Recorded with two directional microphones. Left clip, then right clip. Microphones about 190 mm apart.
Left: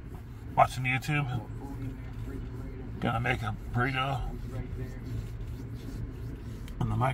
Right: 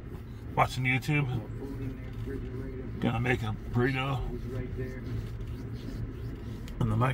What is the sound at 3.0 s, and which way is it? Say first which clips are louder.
Speech: even; 5° left (ahead or behind).